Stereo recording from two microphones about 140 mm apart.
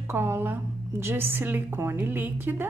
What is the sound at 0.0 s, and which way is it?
A woman's voice, 15° right (ahead or behind).